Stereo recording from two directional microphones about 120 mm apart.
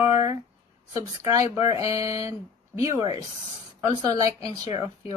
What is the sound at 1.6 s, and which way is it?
Speech, 55° left (ahead or behind).